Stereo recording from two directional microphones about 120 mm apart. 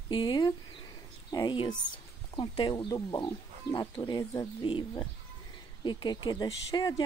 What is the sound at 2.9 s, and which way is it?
Speech, 30° left (ahead or behind).